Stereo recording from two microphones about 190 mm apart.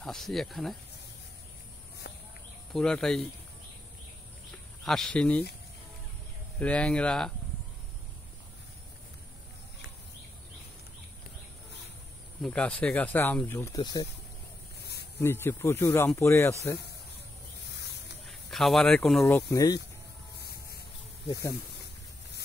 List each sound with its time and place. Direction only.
0.0 s speech: centre (ahead or behind)
2.7 s speech: 5° left (ahead or behind)
4.5 s a sound: centre (ahead or behind)
6.6 s speech: 5° left (ahead or behind)
12.4 s speech: 5° left (ahead or behind)
15.1 s speech: 10° left (ahead or behind)
17.6 s spray: 65° left (ahead or behind)
18.2 s speech: centre (ahead or behind)
19.2 s speech: 15° left (ahead or behind)
20.3 s music: 55° left (ahead or behind)
21.3 s speech: 15° left (ahead or behind)